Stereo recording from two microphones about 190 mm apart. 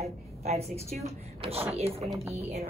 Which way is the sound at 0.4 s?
35° right (ahead or behind).